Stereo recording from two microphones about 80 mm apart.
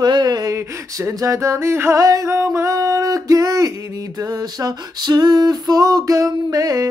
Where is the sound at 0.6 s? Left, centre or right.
Right.